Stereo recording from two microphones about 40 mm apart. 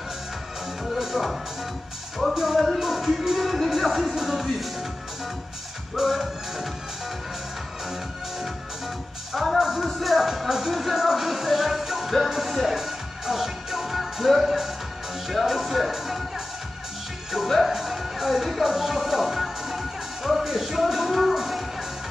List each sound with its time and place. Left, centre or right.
0.8 s music: centre
5.9 s music: centre
9.3 s music: centre
17.5 s music: centre